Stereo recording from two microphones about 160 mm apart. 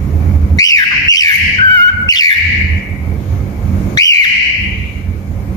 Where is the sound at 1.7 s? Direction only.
25° left (ahead or behind).